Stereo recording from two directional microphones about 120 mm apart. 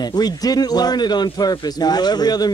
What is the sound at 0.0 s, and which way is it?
A man's voice, 35° left (ahead or behind).